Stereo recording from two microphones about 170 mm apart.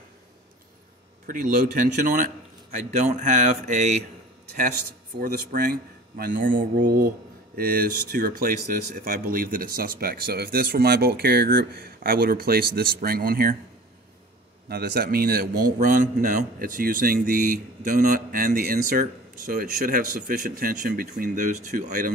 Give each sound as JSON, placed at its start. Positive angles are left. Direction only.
{"t": 1.2, "sound": "a man's voice", "side_deg": -55}
{"t": 5.2, "sound": "a man's voice", "side_deg": -55}
{"t": 14.7, "sound": "a man's voice", "side_deg": -65}